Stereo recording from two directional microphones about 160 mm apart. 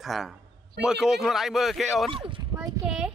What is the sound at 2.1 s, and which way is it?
Speech, 30° right (ahead or behind).